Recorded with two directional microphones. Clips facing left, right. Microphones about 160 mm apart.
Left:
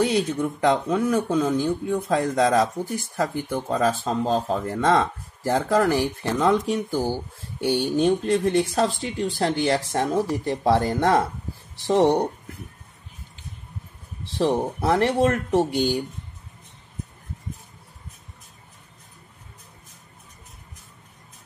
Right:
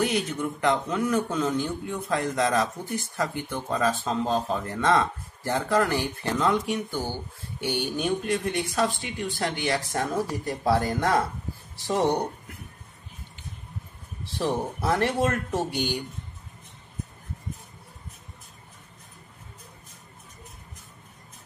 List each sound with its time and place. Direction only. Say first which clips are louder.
0.0 s a man's voice: left 4 dB; 25° left (ahead or behind)
5.4 s speech: left 4 dB; 40° left (ahead or behind)
14.4 s speech: left 5 dB; 25° left (ahead or behind)
15.7 s speech: left 6 dB; 15° right (ahead or behind)